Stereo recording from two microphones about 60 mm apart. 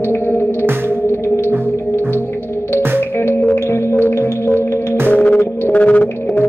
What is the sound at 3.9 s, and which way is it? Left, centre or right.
Music, left.